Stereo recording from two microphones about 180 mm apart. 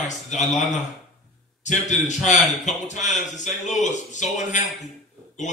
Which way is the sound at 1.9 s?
40° left (ahead or behind).